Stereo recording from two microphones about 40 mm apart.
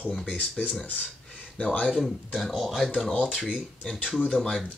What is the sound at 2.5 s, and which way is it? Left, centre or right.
Speech, centre.